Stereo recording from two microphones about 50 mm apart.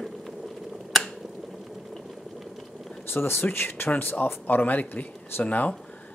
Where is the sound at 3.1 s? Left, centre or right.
Left.